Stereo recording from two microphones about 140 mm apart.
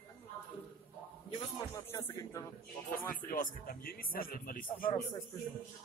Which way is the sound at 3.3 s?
85° left.